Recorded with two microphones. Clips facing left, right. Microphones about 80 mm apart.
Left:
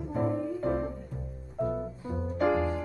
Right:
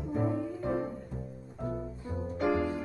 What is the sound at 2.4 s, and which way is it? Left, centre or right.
Music, left.